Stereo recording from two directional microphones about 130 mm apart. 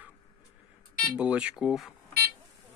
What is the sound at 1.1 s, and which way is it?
Speech, 10° right (ahead or behind).